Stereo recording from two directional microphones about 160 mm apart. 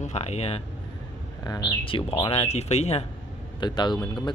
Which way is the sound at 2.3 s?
40° left (ahead or behind).